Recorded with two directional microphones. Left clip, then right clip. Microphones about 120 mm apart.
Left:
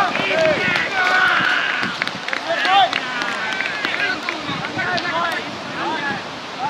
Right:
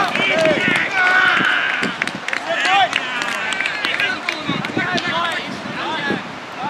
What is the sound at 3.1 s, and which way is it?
Run, 25° right (ahead or behind).